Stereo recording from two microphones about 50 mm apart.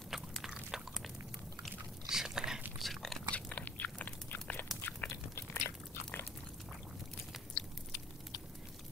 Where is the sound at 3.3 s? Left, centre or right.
Left.